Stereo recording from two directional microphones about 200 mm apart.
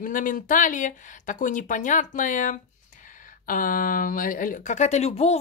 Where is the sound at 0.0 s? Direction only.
40° left (ahead or behind).